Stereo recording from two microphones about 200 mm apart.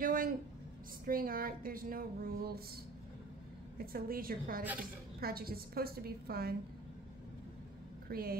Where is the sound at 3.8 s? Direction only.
45° right (ahead or behind).